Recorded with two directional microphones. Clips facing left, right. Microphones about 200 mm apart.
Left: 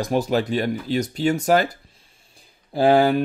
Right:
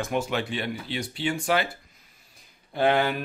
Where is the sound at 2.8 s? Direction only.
35° left (ahead or behind).